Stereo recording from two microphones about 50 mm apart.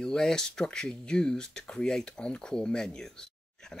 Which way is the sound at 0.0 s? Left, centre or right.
Centre.